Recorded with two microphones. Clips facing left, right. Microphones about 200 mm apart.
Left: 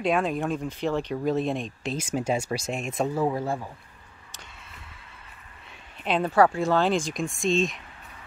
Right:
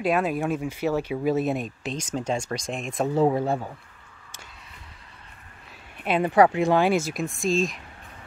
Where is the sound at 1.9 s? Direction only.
10° left (ahead or behind).